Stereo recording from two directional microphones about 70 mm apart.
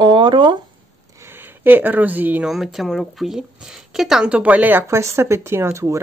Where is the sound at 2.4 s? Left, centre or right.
Centre.